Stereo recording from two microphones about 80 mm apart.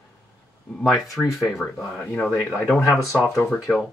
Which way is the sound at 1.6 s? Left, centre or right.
Centre.